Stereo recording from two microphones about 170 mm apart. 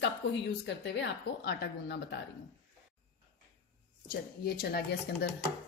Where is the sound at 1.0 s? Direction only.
90° left.